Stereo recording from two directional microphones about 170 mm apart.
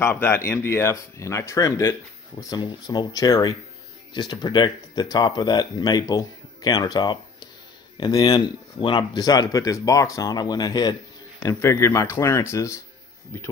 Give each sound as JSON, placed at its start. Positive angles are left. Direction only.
{"t": 0.0, "sound": "speech", "side_deg": 15}